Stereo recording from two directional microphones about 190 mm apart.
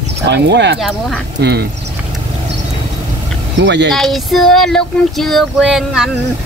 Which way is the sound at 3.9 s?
Centre (ahead or behind).